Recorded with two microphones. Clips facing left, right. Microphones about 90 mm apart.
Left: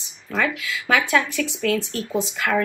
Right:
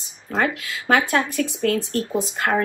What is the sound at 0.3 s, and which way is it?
A woman's voice, 30° right (ahead or behind).